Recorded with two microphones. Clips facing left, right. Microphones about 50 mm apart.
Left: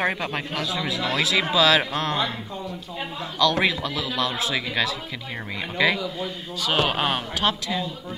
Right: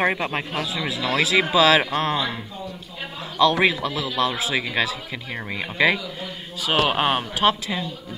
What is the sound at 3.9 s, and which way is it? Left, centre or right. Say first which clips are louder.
A man's voice: right 2 dB; centre.